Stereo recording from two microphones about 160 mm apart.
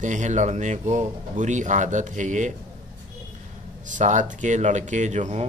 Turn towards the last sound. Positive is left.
turn(degrees=-45)  # may be behind; listen again after turning